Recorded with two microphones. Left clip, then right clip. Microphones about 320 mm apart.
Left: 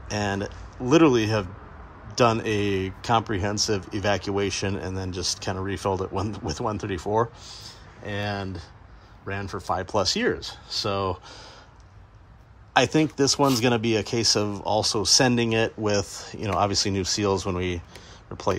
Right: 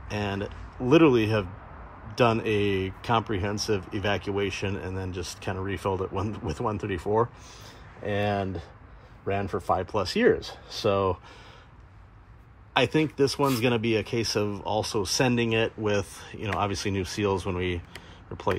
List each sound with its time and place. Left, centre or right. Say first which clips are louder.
0.1 s speech: left 4 dB; centre
12.7 s speech: left 3 dB; centre